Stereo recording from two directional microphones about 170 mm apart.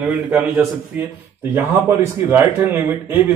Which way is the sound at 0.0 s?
10° right (ahead or behind).